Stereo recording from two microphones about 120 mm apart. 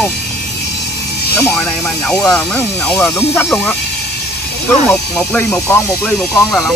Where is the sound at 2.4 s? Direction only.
15° left (ahead or behind).